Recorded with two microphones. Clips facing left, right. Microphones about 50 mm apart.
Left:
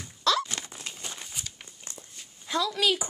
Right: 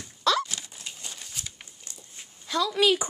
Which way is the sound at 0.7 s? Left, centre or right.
Left.